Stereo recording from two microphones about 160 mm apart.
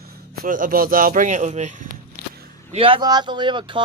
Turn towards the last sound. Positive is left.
turn(degrees=-30)  # may be behind; listen again after turning